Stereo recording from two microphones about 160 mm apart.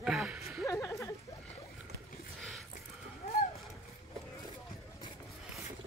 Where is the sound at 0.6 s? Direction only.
20° left (ahead or behind).